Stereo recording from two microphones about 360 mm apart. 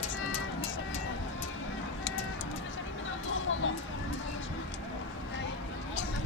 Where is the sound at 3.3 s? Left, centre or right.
Left.